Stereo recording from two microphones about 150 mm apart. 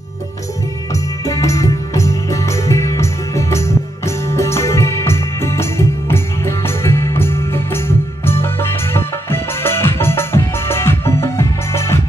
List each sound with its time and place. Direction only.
1.2 s music: 20° left (ahead or behind)